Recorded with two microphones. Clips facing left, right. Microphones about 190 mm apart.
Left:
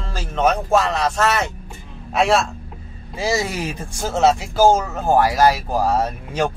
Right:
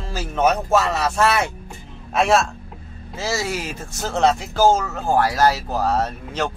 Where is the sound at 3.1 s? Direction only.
15° left (ahead or behind).